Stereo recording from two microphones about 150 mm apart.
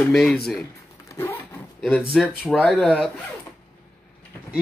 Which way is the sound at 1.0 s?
15° left (ahead or behind).